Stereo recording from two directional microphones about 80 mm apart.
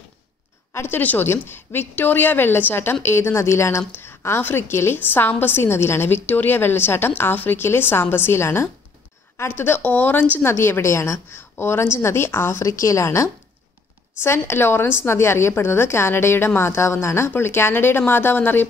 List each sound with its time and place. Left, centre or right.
0.7 s a woman's voice: left
11.3 s a woman's voice: left